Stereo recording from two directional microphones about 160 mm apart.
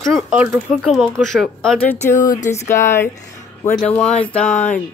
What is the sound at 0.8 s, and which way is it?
Speech, centre (ahead or behind).